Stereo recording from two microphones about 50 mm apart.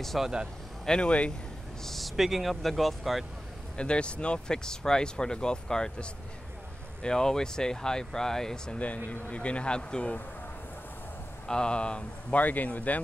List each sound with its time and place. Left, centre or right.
0.2 s speech: centre
1.0 s speech: left
1.9 s speech: centre
3.7 s speech: left
8.7 s speech: left
11.4 s speech: centre